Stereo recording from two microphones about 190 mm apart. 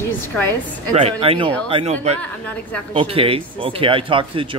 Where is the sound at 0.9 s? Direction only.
35° right (ahead or behind).